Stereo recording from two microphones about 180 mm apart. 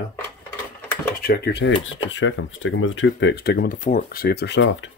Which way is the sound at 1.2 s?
65° left (ahead or behind).